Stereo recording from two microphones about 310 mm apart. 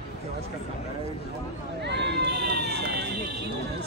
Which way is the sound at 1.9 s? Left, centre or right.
Right.